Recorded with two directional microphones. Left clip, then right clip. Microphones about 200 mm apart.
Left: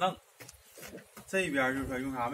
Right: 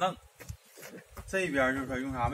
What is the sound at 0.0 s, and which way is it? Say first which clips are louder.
Speech: even; centre (ahead or behind).